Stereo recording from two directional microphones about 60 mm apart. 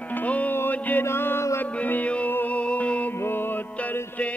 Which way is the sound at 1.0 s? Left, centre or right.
Left.